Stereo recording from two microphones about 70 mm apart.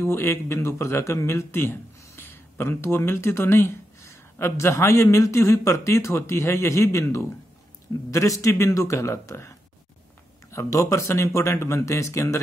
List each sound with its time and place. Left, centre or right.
0.0 s speech: left
10.5 s speech: left